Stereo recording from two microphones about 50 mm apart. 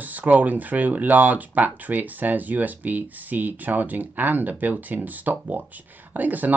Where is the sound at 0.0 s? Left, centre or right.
Right.